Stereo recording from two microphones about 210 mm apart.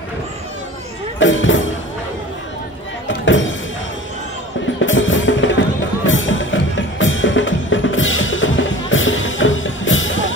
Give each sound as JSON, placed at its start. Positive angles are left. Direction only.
{"t": 1.2, "sound": "music", "side_deg": 65}
{"t": 3.3, "sound": "music", "side_deg": 65}
{"t": 4.8, "sound": "music", "side_deg": 65}